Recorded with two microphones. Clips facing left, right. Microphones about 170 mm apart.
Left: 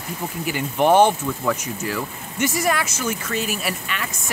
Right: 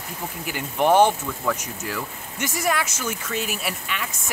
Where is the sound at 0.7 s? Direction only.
15° left (ahead or behind).